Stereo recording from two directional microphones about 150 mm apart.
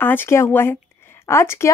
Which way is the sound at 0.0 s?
15° left (ahead or behind).